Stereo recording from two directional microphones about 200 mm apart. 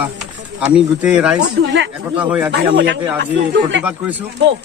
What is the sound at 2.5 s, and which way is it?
Speech, 60° right (ahead or behind).